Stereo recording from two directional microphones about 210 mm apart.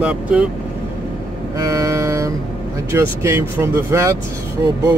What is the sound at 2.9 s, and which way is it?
Speech, 15° right (ahead or behind).